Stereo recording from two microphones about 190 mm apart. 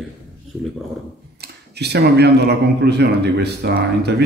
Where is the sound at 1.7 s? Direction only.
60° right (ahead or behind).